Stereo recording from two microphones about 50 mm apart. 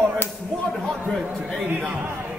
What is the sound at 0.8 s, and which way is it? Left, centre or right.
Speech, centre.